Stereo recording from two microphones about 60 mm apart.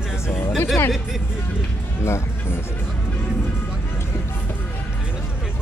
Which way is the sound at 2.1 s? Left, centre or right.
Left.